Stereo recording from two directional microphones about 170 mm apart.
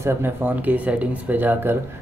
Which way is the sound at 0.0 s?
15° right (ahead or behind).